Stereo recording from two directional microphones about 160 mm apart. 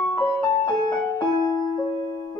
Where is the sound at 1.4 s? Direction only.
20° left (ahead or behind).